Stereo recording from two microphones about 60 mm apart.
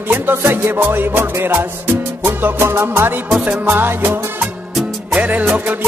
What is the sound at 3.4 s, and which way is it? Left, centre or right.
Music, right.